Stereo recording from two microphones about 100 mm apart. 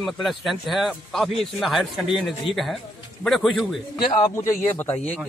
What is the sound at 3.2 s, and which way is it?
Speech, centre (ahead or behind).